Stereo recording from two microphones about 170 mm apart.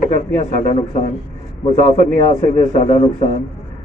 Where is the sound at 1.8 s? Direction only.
40° left (ahead or behind).